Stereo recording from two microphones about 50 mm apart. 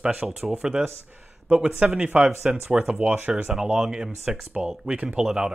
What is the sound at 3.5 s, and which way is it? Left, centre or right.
Speech, centre.